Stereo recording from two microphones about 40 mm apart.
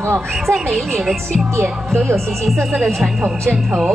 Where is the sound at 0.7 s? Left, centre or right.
Centre.